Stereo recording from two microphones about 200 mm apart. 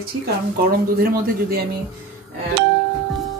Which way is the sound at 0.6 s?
50° right (ahead or behind).